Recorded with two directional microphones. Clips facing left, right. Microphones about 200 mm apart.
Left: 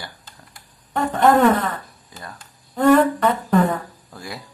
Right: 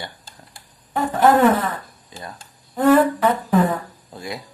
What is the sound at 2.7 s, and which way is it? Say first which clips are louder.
Humming: even; 5° right (ahead or behind).